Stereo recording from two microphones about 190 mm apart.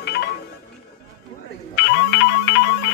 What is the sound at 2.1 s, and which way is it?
Music, 60° left (ahead or behind).